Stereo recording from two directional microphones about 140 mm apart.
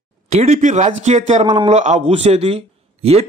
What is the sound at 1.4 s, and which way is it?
Speech, 35° right (ahead or behind).